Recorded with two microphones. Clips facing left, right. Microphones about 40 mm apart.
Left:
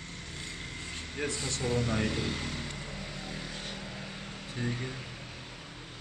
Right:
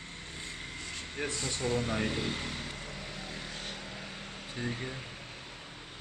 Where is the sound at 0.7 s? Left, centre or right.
Centre.